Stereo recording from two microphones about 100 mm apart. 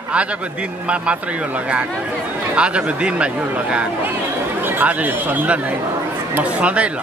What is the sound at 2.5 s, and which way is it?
Speech, 10° right (ahead or behind).